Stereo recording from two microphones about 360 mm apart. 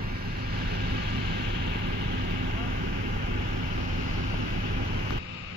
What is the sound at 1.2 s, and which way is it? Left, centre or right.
Vehicle, right.